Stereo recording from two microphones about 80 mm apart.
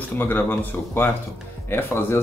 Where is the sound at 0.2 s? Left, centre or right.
Left.